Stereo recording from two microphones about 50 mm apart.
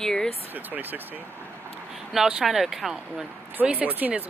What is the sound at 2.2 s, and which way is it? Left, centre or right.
Speech, centre.